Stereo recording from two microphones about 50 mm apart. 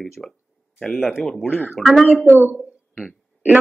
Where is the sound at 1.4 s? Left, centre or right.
Left.